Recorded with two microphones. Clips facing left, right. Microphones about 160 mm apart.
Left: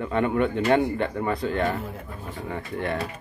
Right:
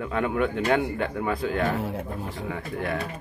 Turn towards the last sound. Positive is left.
turn(degrees=0)  # may be behind; listen again after turning